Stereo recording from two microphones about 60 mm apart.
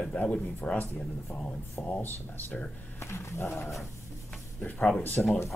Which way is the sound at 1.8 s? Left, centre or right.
Left.